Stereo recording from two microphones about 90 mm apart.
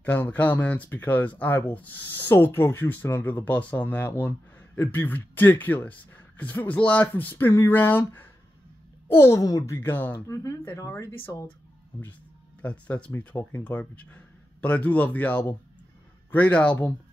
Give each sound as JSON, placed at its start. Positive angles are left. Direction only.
{"t": 0.0, "sound": "speech", "side_deg": 20}
{"t": 10.2, "sound": "speech", "side_deg": 35}
{"t": 12.6, "sound": "speech", "side_deg": 15}